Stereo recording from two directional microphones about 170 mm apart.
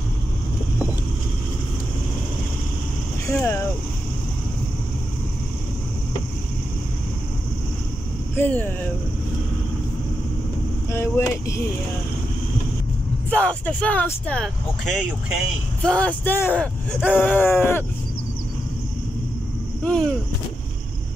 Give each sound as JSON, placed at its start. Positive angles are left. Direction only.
{"t": 3.3, "sound": "vehicle", "side_deg": 15}
{"t": 8.4, "sound": "speech", "side_deg": 10}
{"t": 10.9, "sound": "speech", "side_deg": 15}
{"t": 13.3, "sound": "speech", "side_deg": 10}
{"t": 19.8, "sound": "a sound", "side_deg": 5}